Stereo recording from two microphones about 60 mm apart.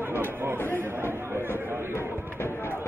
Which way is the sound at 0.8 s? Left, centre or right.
Right.